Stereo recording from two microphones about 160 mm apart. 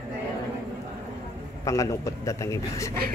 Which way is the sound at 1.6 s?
20° left (ahead or behind).